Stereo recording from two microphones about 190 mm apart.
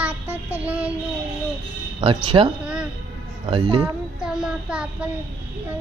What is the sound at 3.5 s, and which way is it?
Speech, 25° right (ahead or behind).